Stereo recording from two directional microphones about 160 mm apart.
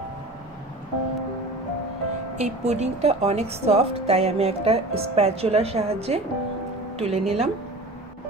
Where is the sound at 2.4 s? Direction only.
45° right (ahead or behind).